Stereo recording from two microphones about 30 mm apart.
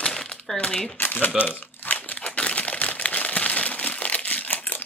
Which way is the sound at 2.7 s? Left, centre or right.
Left.